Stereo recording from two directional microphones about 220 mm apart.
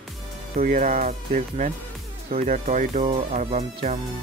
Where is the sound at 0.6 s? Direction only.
40° right (ahead or behind).